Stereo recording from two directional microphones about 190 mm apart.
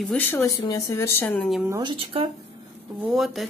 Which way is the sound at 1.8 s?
25° right (ahead or behind).